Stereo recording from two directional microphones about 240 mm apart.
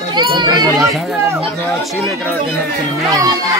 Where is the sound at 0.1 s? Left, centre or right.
Centre.